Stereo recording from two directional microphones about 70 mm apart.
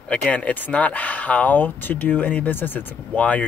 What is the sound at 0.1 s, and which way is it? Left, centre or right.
Speech, centre.